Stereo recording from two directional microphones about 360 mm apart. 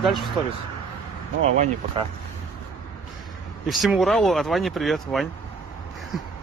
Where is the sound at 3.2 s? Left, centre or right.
Centre.